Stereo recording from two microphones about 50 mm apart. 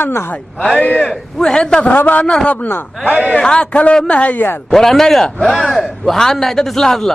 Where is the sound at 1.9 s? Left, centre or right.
Left.